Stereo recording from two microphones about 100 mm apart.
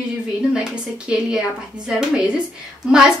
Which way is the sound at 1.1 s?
10° right (ahead or behind).